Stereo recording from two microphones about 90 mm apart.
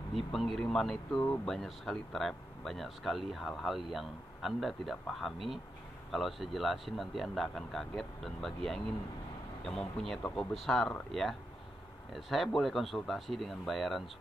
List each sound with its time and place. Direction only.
0.1 s speech: centre (ahead or behind)
1.2 s speech: 15° left (ahead or behind)
1.5 s speech: 5° left (ahead or behind)
9.7 s speech: 5° left (ahead or behind)